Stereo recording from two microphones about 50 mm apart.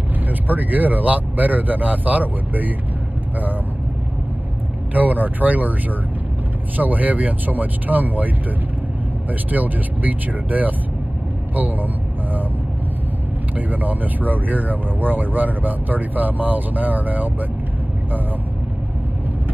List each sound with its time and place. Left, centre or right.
0.3 s speech: right
4.9 s speech: right
6.8 s speech: right
9.3 s speech: right
13.6 s speech: right